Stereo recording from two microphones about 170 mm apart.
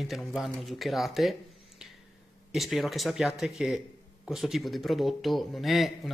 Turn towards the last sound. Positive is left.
turn(degrees=0)  # may be behind; listen again after turning